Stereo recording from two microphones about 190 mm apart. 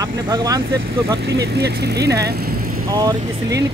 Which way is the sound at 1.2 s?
60° right (ahead or behind).